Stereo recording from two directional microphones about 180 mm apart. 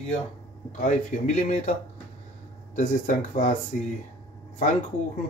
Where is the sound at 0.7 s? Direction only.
45° left (ahead or behind).